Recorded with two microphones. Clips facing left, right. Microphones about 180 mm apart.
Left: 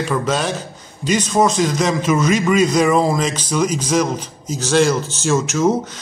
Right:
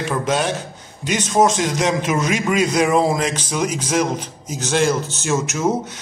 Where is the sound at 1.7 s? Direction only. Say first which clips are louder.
Left 2 dB; 15° right (ahead or behind).